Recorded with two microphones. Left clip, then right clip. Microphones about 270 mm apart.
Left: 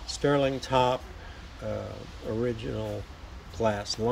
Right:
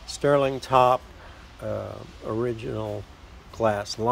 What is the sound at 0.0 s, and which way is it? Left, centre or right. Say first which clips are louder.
Speech: right 4 dB; centre.